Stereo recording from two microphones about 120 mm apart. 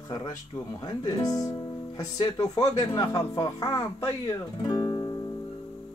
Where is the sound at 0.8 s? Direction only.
35° left (ahead or behind).